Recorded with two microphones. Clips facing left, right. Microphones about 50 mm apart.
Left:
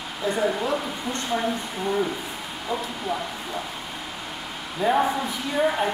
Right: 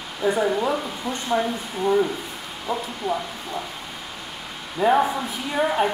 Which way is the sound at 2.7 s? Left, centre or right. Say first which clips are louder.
Right 2 dB; centre.